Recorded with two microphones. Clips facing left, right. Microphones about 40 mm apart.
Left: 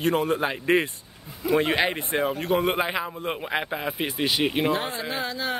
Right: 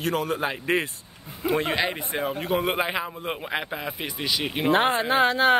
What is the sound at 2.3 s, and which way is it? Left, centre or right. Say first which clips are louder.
A man's voice: left 1 dB; centre.